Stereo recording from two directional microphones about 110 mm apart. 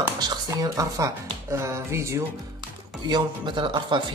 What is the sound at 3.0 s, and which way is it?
Speech, 45° right (ahead or behind).